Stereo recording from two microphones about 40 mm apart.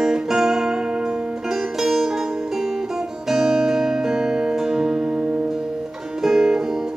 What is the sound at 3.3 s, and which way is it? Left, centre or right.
Music, centre.